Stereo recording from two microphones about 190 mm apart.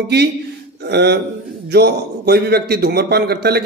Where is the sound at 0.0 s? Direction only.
60° right (ahead or behind).